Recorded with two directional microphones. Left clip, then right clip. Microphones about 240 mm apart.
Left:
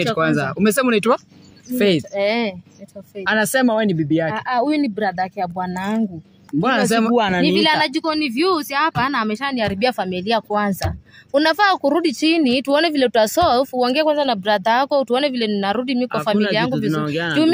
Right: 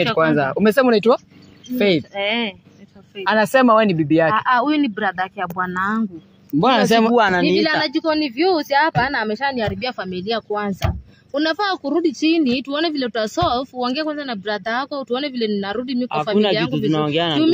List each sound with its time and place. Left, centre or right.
0.2 s speech: left
2.1 s speech: left
3.3 s a woman's voice: centre
4.4 s speech: left
6.6 s speech: centre
7.7 s a woman's voice: centre
9.8 s speech: left
16.9 s speech: centre